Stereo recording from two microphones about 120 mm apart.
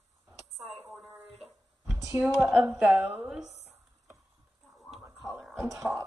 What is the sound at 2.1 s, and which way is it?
A woman's voice, 15° right (ahead or behind).